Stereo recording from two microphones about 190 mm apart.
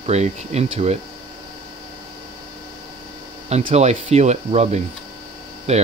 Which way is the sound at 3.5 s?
35° right (ahead or behind).